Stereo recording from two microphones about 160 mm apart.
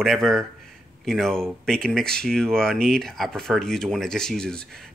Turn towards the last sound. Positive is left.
turn(degrees=5)  # may be behind; listen again after turning